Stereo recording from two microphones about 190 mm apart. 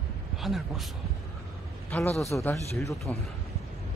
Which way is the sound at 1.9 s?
5° left (ahead or behind).